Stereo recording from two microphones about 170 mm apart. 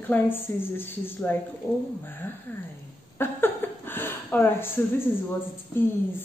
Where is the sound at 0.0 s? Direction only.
10° left (ahead or behind).